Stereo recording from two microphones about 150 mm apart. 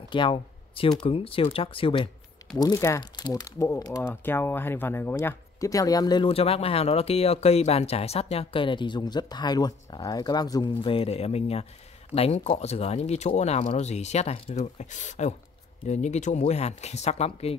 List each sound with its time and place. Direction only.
0.1 s speech: 35° left (ahead or behind)
2.5 s speech: 25° left (ahead or behind)
6.2 s speech: 40° left (ahead or behind)